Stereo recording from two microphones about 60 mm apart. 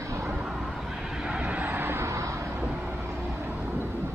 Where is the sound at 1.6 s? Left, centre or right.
Right.